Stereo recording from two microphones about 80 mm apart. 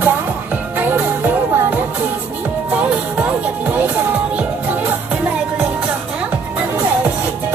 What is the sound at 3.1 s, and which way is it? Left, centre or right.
Music, right.